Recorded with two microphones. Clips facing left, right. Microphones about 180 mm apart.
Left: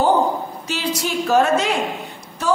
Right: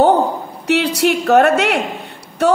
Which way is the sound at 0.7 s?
65° right (ahead or behind).